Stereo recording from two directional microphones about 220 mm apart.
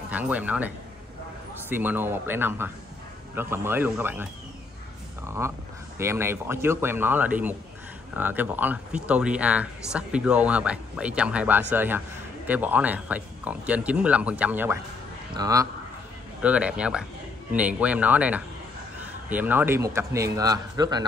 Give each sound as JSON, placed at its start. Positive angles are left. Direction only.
{"t": 0.1, "sound": "a man's voice", "side_deg": -5}